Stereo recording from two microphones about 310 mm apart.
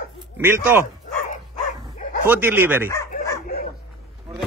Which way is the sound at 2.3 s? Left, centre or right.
Centre.